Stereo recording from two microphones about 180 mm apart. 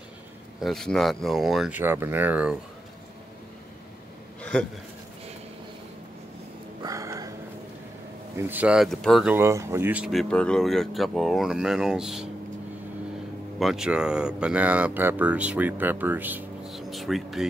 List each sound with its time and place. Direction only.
0.6 s speech: centre (ahead or behind)
4.4 s a sound: 5° left (ahead or behind)
6.8 s a sound: 20° right (ahead or behind)
8.4 s speech: 10° right (ahead or behind)
9.3 s speech: 15° right (ahead or behind)
10.3 s speech: 5° left (ahead or behind)
13.6 s speech: centre (ahead or behind)